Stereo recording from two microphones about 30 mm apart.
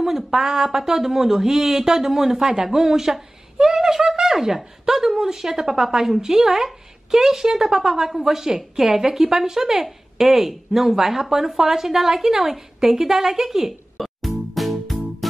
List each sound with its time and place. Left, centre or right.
0.0 s a woman's voice: centre
14.0 s music: centre